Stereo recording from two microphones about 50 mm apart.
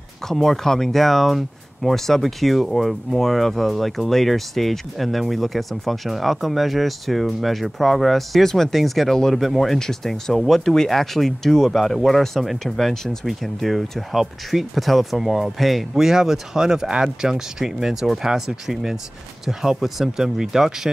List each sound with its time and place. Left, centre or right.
0.3 s speech: centre